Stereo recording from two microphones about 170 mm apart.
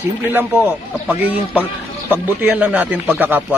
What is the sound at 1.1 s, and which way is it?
Speech, 10° right (ahead or behind).